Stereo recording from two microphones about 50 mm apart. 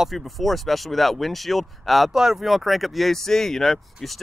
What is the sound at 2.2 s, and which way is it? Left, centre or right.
Speech, centre.